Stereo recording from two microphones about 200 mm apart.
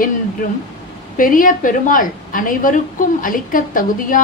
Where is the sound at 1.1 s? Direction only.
45° left (ahead or behind).